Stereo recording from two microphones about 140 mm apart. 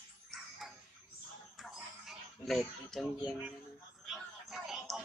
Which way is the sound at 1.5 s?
Centre (ahead or behind).